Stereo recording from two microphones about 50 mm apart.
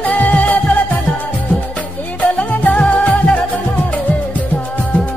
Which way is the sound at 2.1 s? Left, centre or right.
Left.